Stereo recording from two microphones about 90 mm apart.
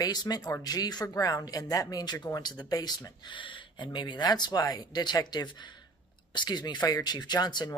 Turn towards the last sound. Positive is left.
turn(degrees=50)  # may be behind; listen again after turning